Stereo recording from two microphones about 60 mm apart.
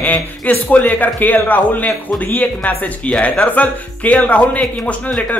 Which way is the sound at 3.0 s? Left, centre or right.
Centre.